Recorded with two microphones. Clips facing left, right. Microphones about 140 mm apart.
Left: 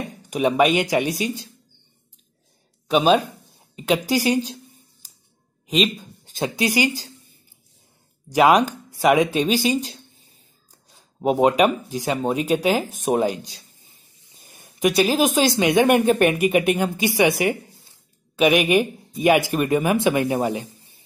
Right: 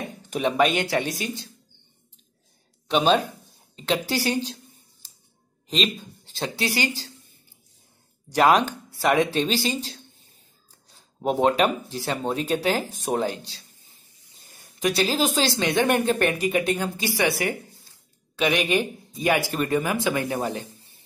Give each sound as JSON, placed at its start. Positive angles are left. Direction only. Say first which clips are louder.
{"t": 0.3, "sound": "speech", "louder": "left 4 dB", "side_deg": 10}
{"t": 2.9, "sound": "speech", "louder": "left 3 dB", "side_deg": 5}
{"t": 5.7, "sound": "a sound", "louder": "left 5 dB", "side_deg": 10}
{"t": 6.4, "sound": "speech", "louder": "left 5 dB", "side_deg": 15}
{"t": 8.3, "sound": "speech", "louder": "left 3 dB", "side_deg": 10}
{"t": 11.1, "sound": "speech", "louder": "left 4 dB", "side_deg": 10}
{"t": 14.4, "sound": "a sound", "louder": "left 5 dB", "side_deg": 20}
{"t": 15.2, "sound": "speech", "louder": "left 5 dB", "side_deg": 20}
{"t": 18.4, "sound": "speech", "louder": "left 6 dB", "side_deg": 15}